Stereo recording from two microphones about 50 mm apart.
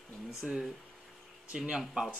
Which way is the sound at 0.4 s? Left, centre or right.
Centre.